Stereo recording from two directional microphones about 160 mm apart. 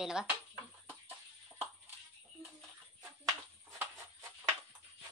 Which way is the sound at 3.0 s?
15° right (ahead or behind).